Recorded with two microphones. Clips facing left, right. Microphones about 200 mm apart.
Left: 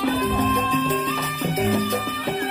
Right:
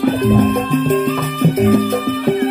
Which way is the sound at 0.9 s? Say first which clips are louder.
Right 9 dB; 55° right (ahead or behind).